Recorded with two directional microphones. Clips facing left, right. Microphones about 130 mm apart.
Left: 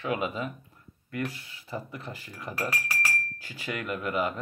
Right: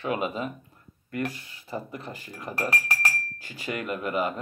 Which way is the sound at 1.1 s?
40° right (ahead or behind).